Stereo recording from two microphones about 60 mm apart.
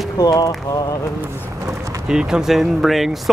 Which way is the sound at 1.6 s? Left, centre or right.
Right.